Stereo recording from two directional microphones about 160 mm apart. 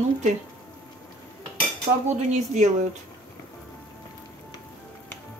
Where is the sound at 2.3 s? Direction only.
45° right (ahead or behind).